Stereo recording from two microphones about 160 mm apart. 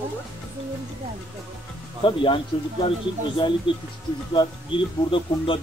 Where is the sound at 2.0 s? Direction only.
30° left (ahead or behind).